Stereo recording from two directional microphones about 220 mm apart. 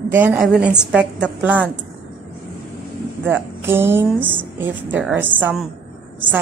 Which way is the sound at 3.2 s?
10° right (ahead or behind).